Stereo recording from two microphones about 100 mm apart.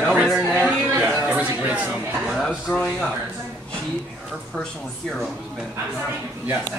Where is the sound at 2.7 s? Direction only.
10° left (ahead or behind).